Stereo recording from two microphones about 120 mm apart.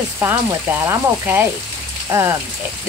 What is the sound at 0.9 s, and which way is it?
Speech, 15° right (ahead or behind).